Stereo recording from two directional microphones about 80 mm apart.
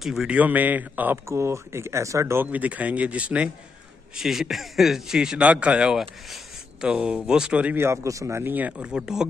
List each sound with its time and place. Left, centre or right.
0.0 s speech: centre
0.3 s speech: centre
1.3 s speech: right
2.4 s speech: centre
4.2 s speech: centre
7.7 s speech: right; by 9.2 s centre